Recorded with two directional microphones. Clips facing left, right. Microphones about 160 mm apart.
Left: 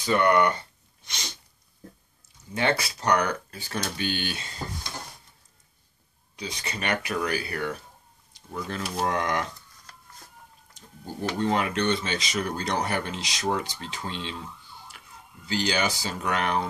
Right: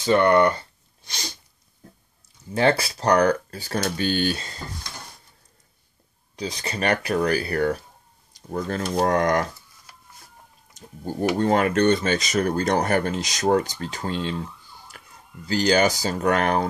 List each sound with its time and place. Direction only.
0.0 s speech: 30° right (ahead or behind)
1.0 s sneeze: 35° right (ahead or behind)
2.5 s speech: 35° right (ahead or behind)
6.3 s speech: 35° right (ahead or behind)
9.9 s a sound: 10° right (ahead or behind)
10.7 s a sound: 50° right (ahead or behind)
11.3 s speech: 50° right (ahead or behind)
14.9 s ambulance: 45° right (ahead or behind)
15.4 s speech: 40° right (ahead or behind)